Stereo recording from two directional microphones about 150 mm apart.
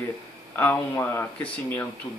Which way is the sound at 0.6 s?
15° left (ahead or behind).